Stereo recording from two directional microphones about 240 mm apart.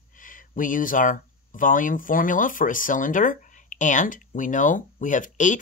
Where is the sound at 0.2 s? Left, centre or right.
Left.